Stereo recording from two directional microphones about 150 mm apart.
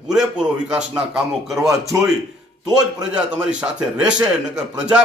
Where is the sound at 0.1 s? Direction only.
5° right (ahead or behind).